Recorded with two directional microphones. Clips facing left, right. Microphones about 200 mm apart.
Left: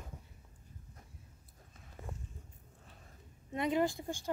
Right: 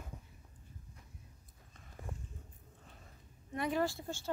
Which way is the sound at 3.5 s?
20° left (ahead or behind).